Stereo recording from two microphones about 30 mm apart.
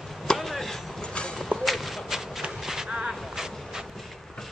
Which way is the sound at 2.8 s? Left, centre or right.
Right.